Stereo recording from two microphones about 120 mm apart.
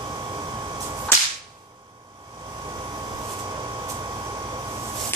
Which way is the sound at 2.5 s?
35° right (ahead or behind).